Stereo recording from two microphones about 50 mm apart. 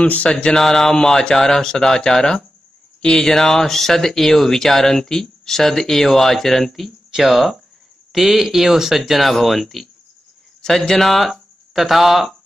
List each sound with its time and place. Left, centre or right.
0.0 s mantra: left
0.5 s speech: centre